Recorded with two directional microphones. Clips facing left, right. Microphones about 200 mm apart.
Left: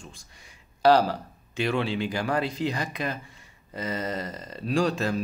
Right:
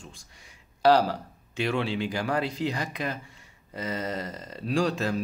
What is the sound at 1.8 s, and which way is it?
Speech, 45° left (ahead or behind).